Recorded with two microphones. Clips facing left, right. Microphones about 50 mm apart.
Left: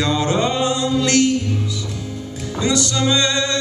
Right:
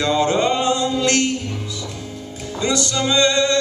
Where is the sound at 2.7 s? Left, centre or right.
Right.